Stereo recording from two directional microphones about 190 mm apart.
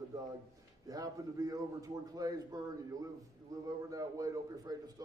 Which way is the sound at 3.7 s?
20° right (ahead or behind).